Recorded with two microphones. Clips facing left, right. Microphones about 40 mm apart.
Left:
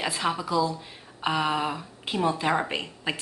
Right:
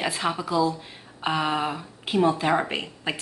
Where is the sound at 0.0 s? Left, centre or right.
Centre.